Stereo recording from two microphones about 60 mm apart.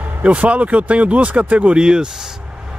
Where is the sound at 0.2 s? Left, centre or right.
Right.